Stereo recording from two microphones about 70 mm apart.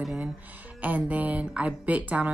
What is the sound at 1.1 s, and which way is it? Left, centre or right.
A woman's voice, right.